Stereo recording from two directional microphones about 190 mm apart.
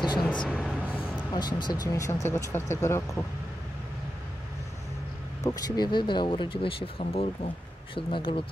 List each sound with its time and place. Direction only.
0.2 s a sound: 5° left (ahead or behind)
1.3 s speech: 20° left (ahead or behind)
5.4 s speech: 20° left (ahead or behind)